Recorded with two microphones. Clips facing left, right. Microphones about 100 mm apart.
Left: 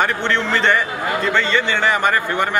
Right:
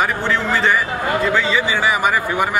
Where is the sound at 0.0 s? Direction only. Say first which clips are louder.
Even; 5° right (ahead or behind).